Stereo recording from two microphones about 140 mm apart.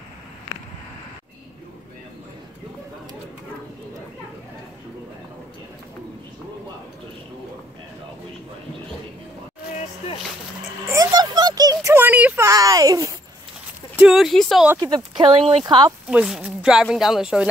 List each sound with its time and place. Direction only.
10.9 s a sound: 25° right (ahead or behind); by 12.4 s 10° right (ahead or behind)
12.4 s a sound: 25° right (ahead or behind)
13.9 s speech: 5° right (ahead or behind)
14.8 s speech: 30° right (ahead or behind)
15.6 s speech: 35° right (ahead or behind)
16.1 s speech: 10° right (ahead or behind)